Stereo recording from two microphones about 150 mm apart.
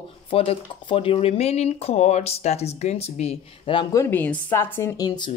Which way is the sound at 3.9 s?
15° left (ahead or behind).